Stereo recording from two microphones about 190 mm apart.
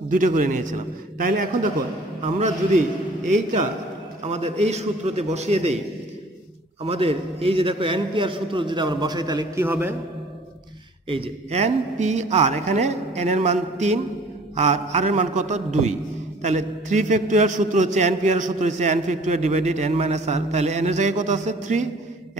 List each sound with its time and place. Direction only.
0.1 s a man's voice: 45° right (ahead or behind)
2.2 s a man's voice: 35° right (ahead or behind)
4.3 s a man's voice: 35° right (ahead or behind)
6.8 s a man's voice: 30° right (ahead or behind)
9.7 s a man's voice: 10° right (ahead or behind)
11.1 s a man's voice: 30° right (ahead or behind)